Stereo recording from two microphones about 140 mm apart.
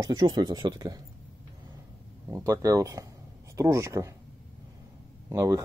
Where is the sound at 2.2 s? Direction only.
20° right (ahead or behind).